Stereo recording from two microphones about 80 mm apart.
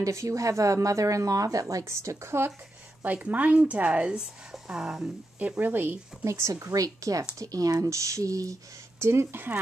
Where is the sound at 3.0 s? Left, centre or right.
Centre.